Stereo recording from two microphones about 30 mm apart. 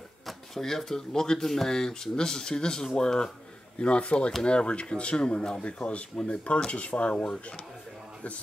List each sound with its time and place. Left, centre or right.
0.6 s speech: centre
1.7 s speech: left
3.8 s speech: left
5.1 s speech: left
5.6 s speech: left